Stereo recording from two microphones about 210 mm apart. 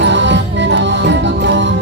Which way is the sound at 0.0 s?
60° right (ahead or behind).